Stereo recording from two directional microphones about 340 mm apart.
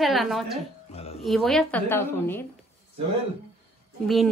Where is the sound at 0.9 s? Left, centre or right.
Centre.